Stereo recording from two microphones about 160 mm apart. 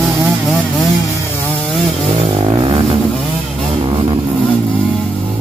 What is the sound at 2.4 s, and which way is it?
Vehicle, 30° right (ahead or behind).